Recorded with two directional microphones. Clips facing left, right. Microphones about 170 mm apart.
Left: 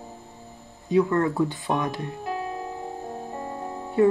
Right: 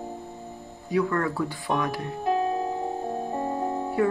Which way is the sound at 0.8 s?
20° left (ahead or behind).